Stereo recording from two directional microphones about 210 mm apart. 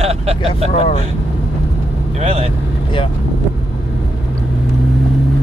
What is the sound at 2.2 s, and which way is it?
Speech, 30° right (ahead or behind).